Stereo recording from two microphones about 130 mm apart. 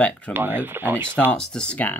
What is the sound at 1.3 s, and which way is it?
Speech, 5° left (ahead or behind).